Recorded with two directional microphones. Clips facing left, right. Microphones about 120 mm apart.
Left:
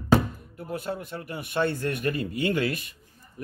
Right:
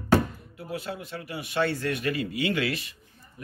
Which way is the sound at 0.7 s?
50° left (ahead or behind).